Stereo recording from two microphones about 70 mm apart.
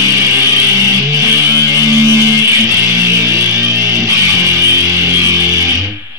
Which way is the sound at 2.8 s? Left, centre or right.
Right.